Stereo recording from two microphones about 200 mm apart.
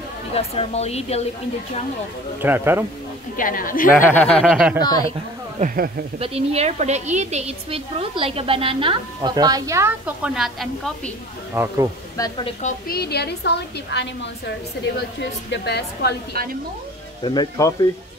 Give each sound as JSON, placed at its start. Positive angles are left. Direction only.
{"t": 0.3, "sound": "speech", "side_deg": 30}
{"t": 2.4, "sound": "speech", "side_deg": -10}
{"t": 3.3, "sound": "a woman's voice", "side_deg": 45}
{"t": 4.0, "sound": "speech", "side_deg": 10}
{"t": 4.8, "sound": "speech", "side_deg": 20}
{"t": 5.6, "sound": "speech", "side_deg": -45}
{"t": 6.1, "sound": "a woman's voice", "side_deg": -30}
{"t": 11.5, "sound": "speech", "side_deg": -10}
{"t": 12.2, "sound": "a woman's voice", "side_deg": 15}
{"t": 12.6, "sound": "a woman's voice", "side_deg": 50}
{"t": 17.2, "sound": "speech", "side_deg": 20}